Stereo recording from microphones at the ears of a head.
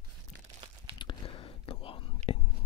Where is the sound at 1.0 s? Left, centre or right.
Left.